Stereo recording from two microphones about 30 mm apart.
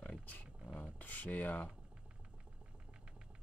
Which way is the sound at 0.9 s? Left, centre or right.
Left.